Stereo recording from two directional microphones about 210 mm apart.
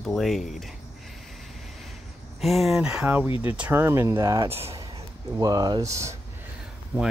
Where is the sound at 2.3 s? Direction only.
Centre (ahead or behind); by 4.5 s 15° right (ahead or behind).